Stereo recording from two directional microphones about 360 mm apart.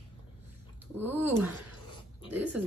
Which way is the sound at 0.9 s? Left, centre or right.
Centre.